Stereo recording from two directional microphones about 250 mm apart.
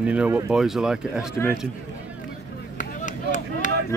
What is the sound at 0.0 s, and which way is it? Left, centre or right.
Speech, centre.